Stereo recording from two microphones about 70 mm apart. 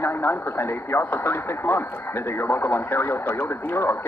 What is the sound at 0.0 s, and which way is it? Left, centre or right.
Speech, left.